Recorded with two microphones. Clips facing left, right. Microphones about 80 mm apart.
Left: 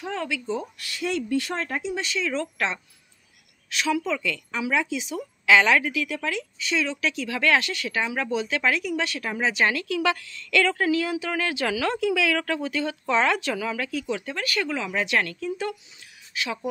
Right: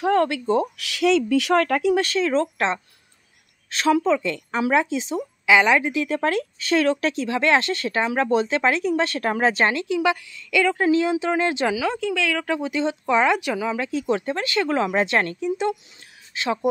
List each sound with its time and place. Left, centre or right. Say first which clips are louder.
0.0 s speech: right 10 dB; right
2.0 s speech: right 7 dB; right
3.7 s speech: right 6 dB; right
5.5 s speech: right 2 dB; centre
5.9 s speech: right 6 dB; right
9.8 s a woman's voice: right 3 dB; centre
10.8 s speech: right 5 dB; right
11.7 s a woman's voice: right 2 dB; centre
12.0 s a woman's voice: left 1 dB; centre
12.4 s speech: right 4 dB; centre
14.0 s speech: right 6 dB; right
14.7 s speech: right 8 dB; right
15.4 s speech: right 6 dB; right